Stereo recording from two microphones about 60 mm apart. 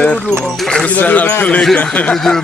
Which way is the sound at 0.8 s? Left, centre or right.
Left.